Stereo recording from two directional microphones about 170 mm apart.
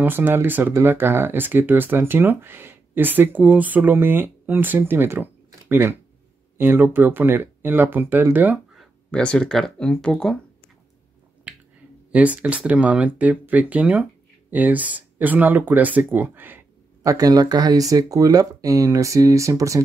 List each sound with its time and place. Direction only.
0.0 s speech: 10° right (ahead or behind)
9.1 s speech: 5° left (ahead or behind)
11.5 s finger snapping: 10° right (ahead or behind)
12.1 s speech: 10° right (ahead or behind)